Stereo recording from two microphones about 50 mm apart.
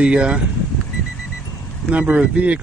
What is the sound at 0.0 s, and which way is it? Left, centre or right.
Speech, right.